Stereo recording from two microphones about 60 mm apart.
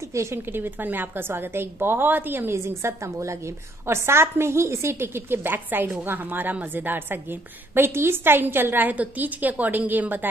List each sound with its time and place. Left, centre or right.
0.1 s speech: right
0.5 s a woman's voice: right